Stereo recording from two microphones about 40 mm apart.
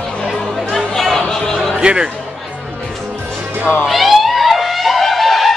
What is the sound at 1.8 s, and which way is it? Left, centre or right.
Speech, right.